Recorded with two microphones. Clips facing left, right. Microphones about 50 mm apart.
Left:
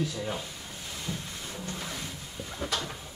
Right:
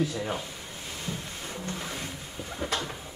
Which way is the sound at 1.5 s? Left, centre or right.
Right.